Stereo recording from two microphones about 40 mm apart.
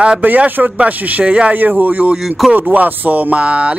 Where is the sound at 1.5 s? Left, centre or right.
Right.